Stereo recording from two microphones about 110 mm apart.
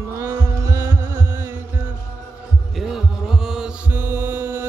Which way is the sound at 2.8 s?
5° right (ahead or behind).